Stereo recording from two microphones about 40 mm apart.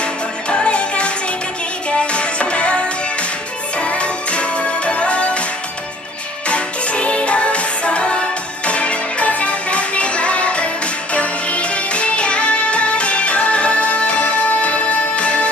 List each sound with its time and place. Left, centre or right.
0.0 s music: left
6.5 s music: left